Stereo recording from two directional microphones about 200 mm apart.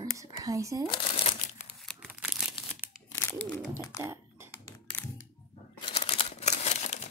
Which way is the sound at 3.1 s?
10° left (ahead or behind).